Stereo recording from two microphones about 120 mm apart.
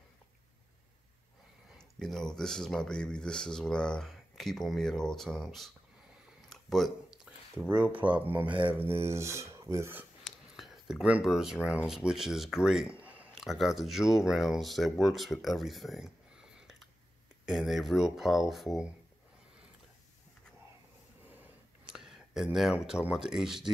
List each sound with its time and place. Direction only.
1.8 s speech: 5° left (ahead or behind)
6.5 s a sound: centre (ahead or behind)
8.0 s speech: 15° right (ahead or behind)
8.5 s mantra: 45° right (ahead or behind)
8.7 s speech: 20° right (ahead or behind)
10.2 s speech: centre (ahead or behind)
13.0 s a sound: 10° right (ahead or behind)
13.4 s speech: centre (ahead or behind)
21.9 s speech: 5° right (ahead or behind)